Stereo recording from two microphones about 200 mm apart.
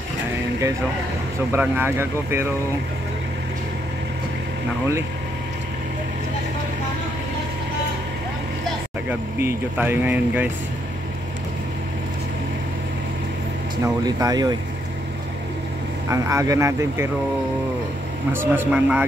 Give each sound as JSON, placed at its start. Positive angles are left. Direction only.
{"t": 1.5, "sound": "speech", "side_deg": -10}
{"t": 9.4, "sound": "speech", "side_deg": -10}
{"t": 13.8, "sound": "speech", "side_deg": -20}
{"t": 16.1, "sound": "speech", "side_deg": -15}
{"t": 18.3, "sound": "speech", "side_deg": -10}